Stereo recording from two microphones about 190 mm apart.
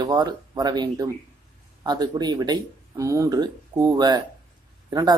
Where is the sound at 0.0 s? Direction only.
20° right (ahead or behind).